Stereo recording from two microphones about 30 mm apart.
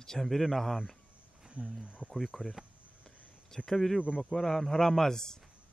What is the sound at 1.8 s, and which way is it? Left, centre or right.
Speech, right.